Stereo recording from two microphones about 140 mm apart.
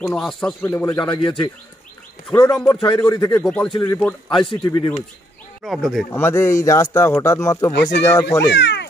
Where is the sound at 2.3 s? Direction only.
15° left (ahead or behind).